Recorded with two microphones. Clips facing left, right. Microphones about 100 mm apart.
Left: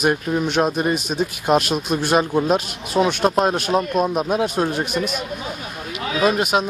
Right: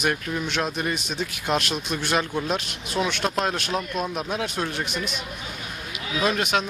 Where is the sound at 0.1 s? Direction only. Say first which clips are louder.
Left 7 dB; 25° left (ahead or behind).